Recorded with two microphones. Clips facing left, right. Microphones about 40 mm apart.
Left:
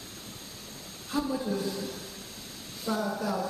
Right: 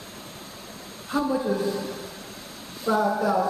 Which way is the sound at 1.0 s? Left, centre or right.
Right.